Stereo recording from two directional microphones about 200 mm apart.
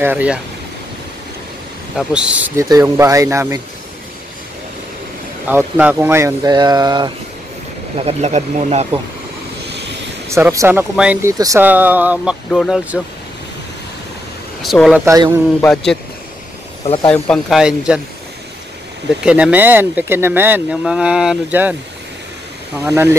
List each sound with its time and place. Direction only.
0.0 s speech: 10° right (ahead or behind)
2.0 s speech: 5° right (ahead or behind)
5.5 s speech: 10° right (ahead or behind)
8.0 s speech: 30° right (ahead or behind)
9.7 s vehicle: 60° right (ahead or behind)
10.2 s speech: 15° right (ahead or behind)
14.6 s speech: centre (ahead or behind)
15.0 s a man's voice: 20° right (ahead or behind)
15.6 s speech: 5° left (ahead or behind)
16.8 s speech: 30° left (ahead or behind)
17.1 s speech: centre (ahead or behind)
19.2 s speech: 5° right (ahead or behind)
22.8 s speech: 15° right (ahead or behind)